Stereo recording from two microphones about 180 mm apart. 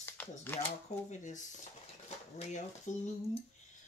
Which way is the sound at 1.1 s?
45° left (ahead or behind).